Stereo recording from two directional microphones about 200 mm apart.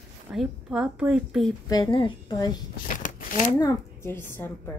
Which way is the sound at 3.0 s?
40° left (ahead or behind).